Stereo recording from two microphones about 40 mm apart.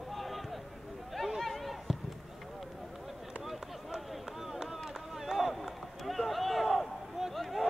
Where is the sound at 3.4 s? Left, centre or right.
Centre.